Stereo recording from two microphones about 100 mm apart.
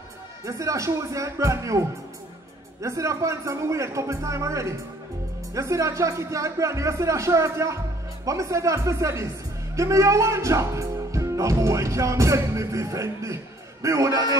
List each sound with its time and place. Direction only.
0.5 s speech: 30° right (ahead or behind)